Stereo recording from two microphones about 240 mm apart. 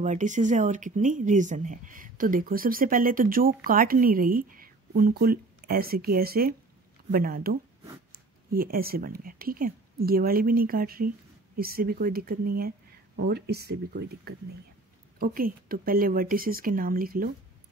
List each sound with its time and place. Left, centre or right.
0.0 s speech: right